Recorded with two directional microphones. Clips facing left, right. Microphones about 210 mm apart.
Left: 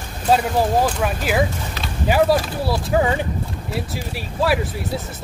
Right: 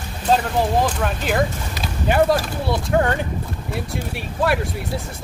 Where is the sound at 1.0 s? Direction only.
5° left (ahead or behind).